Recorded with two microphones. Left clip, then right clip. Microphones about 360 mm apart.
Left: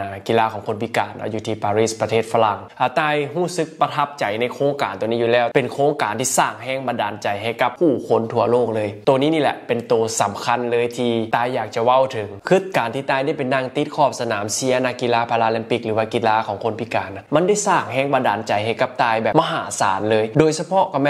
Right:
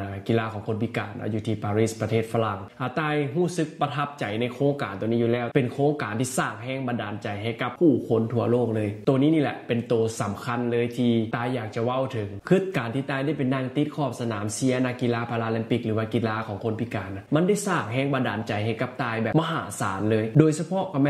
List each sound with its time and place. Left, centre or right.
0.3 s speech: left